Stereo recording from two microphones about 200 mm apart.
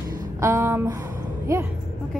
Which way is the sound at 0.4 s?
15° right (ahead or behind).